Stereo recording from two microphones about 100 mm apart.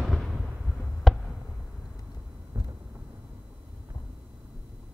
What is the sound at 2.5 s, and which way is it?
Vehicle, 30° right (ahead or behind).